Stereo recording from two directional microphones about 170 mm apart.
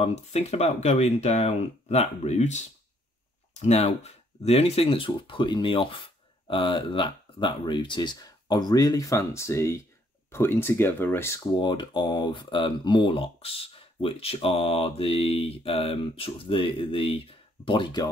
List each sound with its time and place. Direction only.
0.0 s speech: 40° left (ahead or behind); by 11.4 s 15° left (ahead or behind)
11.5 s speech: 25° left (ahead or behind)